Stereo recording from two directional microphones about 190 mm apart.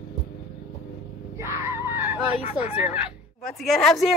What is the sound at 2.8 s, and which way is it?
Speech, 5° right (ahead or behind).